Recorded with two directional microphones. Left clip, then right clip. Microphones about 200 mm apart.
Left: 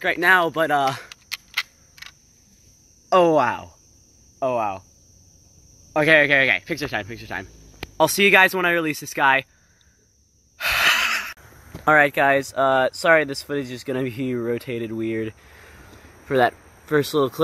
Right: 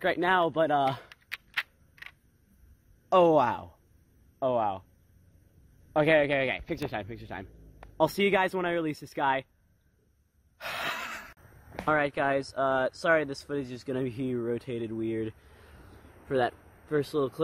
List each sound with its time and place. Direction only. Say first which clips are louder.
0.2 s a sound: left 10 dB; 15° right (ahead or behind)
3.1 s speech: left 5 dB; 10° right (ahead or behind)
5.9 s speech: left 8 dB; 5° right (ahead or behind)
10.6 s gasp: left 15 dB; centre (ahead or behind)
11.8 s speech: left 11 dB; 15° left (ahead or behind)